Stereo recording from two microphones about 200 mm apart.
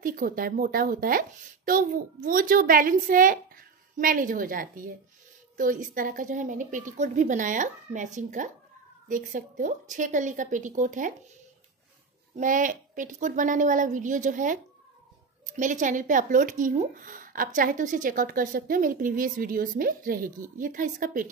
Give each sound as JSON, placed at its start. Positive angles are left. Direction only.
{"t": 0.0, "sound": "a woman's voice", "side_deg": -45}
{"t": 12.4, "sound": "speech", "side_deg": -40}